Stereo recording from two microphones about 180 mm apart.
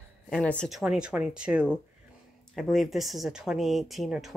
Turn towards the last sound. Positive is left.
turn(degrees=0)  # may be behind; listen again after turning